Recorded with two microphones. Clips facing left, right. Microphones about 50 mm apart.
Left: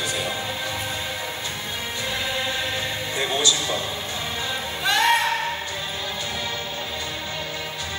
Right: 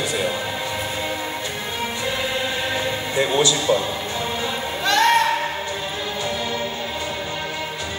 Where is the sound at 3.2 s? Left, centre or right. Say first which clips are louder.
Right 5 dB; right.